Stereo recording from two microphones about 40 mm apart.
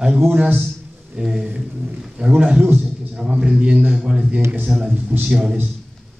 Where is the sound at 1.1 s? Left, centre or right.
Centre.